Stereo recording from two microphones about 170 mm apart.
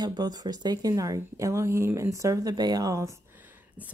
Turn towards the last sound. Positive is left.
turn(degrees=-20)  # may be behind; listen again after turning